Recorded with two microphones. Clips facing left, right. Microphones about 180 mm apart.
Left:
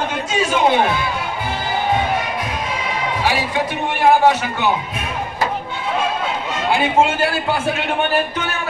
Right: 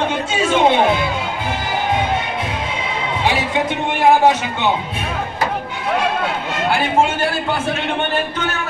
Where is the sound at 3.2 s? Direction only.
20° right (ahead or behind).